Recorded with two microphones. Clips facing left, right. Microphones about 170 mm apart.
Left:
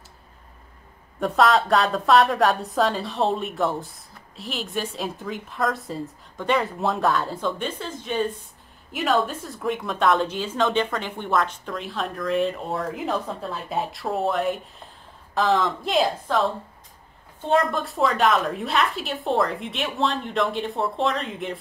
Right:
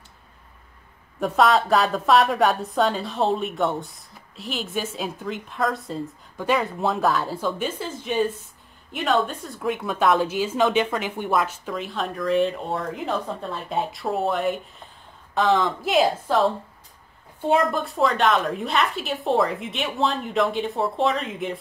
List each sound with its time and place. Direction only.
1.2 s a woman's voice: centre (ahead or behind)
17.5 s a woman's voice: centre (ahead or behind)